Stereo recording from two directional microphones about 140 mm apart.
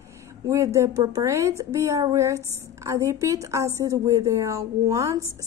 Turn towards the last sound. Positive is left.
turn(degrees=-20)  # may be behind; listen again after turning